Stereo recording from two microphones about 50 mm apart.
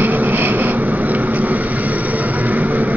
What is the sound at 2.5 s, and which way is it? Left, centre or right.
Vehicle, right.